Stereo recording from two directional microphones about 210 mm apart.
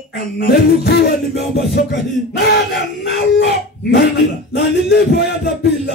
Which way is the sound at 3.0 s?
50° left (ahead or behind).